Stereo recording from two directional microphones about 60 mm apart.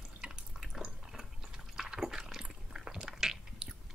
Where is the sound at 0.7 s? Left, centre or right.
Centre.